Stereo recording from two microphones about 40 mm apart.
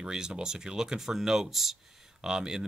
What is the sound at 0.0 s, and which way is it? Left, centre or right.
Speech, centre.